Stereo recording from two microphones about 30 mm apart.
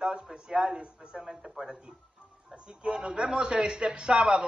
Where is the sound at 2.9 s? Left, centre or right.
Right.